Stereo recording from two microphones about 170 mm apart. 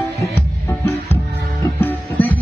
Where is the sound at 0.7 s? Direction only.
15° left (ahead or behind).